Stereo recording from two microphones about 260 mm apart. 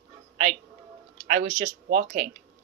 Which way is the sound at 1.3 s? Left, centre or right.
Right.